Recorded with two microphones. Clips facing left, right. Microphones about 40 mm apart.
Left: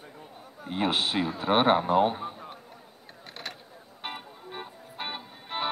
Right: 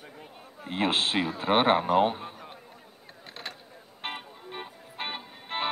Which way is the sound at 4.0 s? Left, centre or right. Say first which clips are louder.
Right 1 dB; right.